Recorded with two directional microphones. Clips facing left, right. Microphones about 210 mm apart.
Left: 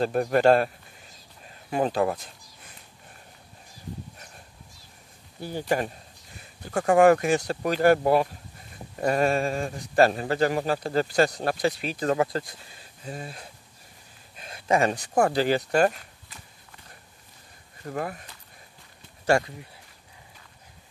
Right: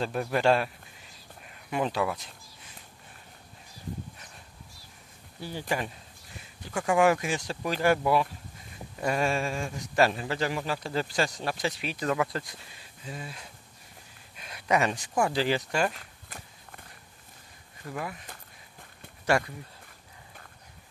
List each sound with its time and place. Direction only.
0.0 s speech: 45° left (ahead or behind)
1.4 s a sound: 40° left (ahead or behind)
5.4 s speech: 45° left (ahead or behind)
10.0 s speech: 45° left (ahead or behind)
14.3 s a sound: 30° left (ahead or behind)
15.1 s speech: 45° left (ahead or behind)
16.3 s walk: 55° right (ahead or behind)
17.8 s speech: 45° left (ahead or behind)
19.3 s speech: 25° left (ahead or behind)